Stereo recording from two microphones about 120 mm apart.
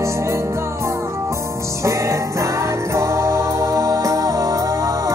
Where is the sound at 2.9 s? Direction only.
25° right (ahead or behind).